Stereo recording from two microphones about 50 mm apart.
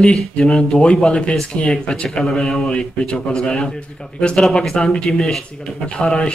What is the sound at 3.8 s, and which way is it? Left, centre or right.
Speech, left.